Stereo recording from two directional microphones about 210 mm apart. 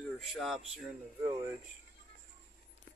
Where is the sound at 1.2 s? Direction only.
15° right (ahead or behind).